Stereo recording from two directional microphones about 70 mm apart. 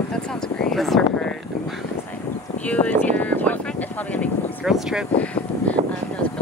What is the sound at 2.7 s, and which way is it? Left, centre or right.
Speech, centre.